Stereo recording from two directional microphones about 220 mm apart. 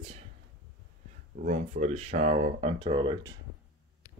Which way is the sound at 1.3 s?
35° right (ahead or behind).